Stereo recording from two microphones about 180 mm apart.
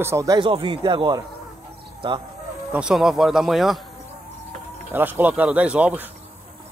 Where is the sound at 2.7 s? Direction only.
5° right (ahead or behind).